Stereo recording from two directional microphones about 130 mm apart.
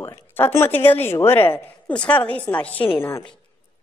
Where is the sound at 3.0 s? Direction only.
25° left (ahead or behind).